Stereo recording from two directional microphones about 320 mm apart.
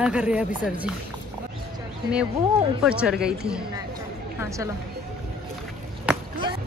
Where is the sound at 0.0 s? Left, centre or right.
Centre.